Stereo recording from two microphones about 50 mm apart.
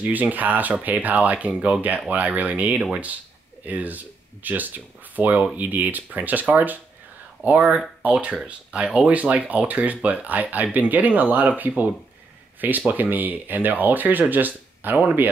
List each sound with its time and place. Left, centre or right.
0.0 s speech: right
8.1 s speech: right